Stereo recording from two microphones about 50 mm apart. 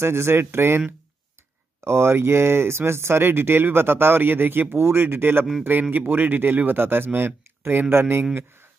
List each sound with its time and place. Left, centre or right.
0.0 s speech: right
1.9 s speech: right